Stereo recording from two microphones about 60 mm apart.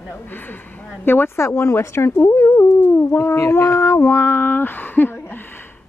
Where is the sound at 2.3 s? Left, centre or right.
Left.